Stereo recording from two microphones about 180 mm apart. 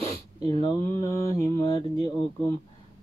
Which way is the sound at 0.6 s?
15° left (ahead or behind).